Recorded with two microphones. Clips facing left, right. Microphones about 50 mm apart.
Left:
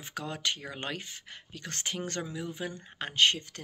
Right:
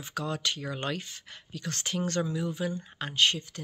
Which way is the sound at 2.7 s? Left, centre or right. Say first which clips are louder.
Right 3 dB; left.